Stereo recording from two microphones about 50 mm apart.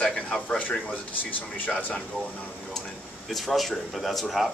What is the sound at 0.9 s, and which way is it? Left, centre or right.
Speech, left.